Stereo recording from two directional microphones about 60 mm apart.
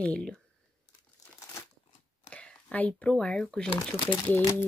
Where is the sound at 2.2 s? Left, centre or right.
Centre.